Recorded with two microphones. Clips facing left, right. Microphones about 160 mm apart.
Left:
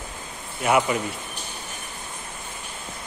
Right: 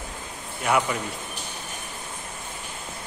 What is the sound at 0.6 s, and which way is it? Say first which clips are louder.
Speech: left 3 dB; 10° left (ahead or behind).